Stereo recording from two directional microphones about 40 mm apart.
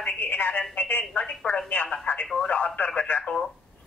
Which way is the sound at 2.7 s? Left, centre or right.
Left.